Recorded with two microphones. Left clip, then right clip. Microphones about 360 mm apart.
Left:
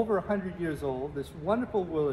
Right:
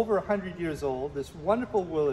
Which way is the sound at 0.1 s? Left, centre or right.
Right.